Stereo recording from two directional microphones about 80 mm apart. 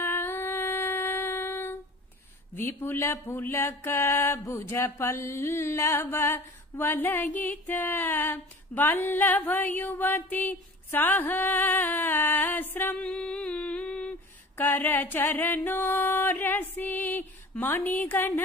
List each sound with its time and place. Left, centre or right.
0.0 s a sound: left
2.5 s music: left; by 14.1 s centre
14.6 s music: left